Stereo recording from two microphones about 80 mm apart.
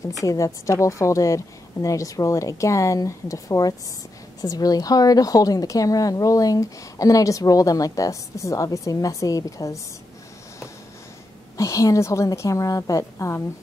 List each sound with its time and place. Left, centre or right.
0.2 s a woman's voice: left
11.5 s a woman's voice: left